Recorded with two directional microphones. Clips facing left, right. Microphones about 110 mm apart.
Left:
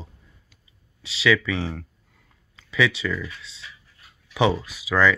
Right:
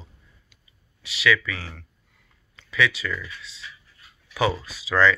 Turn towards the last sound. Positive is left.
turn(degrees=15)  # may be behind; listen again after turning